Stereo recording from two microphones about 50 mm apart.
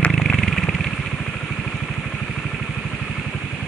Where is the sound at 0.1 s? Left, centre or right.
Centre.